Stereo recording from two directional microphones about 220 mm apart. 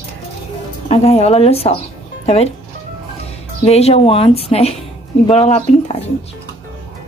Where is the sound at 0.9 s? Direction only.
30° left (ahead or behind).